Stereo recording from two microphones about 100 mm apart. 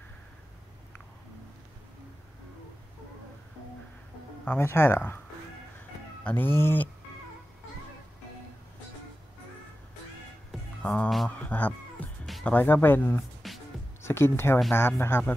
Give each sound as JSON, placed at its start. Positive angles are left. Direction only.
{"t": 4.5, "sound": "speech", "side_deg": 25}
{"t": 6.2, "sound": "speech", "side_deg": 20}
{"t": 10.8, "sound": "music", "side_deg": 10}
{"t": 12.4, "sound": "speech", "side_deg": 20}
{"t": 13.4, "sound": "music", "side_deg": 0}
{"t": 14.0, "sound": "speech", "side_deg": 25}